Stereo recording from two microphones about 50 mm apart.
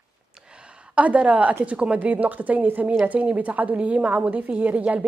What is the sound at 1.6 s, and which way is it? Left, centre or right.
A woman's voice, right.